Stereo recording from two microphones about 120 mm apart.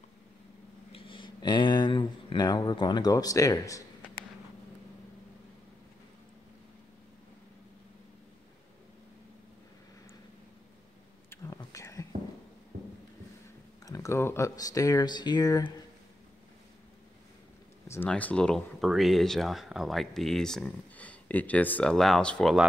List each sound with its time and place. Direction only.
0.9 s speech: 45° left (ahead or behind); by 3.8 s 30° left (ahead or behind)
11.2 s whispering: 25° left (ahead or behind)
13.8 s speech: 25° left (ahead or behind)
17.8 s a sound: 20° left (ahead or behind)
18.1 s speech: 10° left (ahead or behind)